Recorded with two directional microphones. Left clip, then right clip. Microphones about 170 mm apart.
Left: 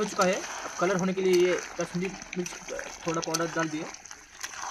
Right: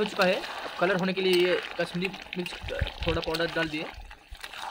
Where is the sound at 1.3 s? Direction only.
35° right (ahead or behind).